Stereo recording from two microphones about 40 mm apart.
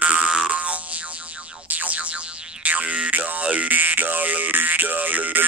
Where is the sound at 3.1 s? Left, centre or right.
Right.